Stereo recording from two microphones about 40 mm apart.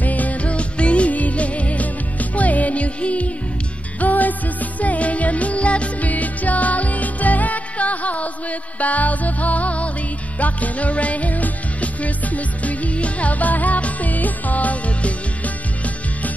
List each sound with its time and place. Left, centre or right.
0.0 s music: left
4.0 s music: left